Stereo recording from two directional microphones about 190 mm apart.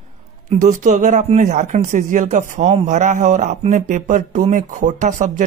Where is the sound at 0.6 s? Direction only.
40° right (ahead or behind).